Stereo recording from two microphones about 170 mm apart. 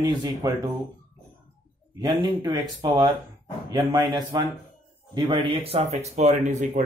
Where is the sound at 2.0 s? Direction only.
20° right (ahead or behind).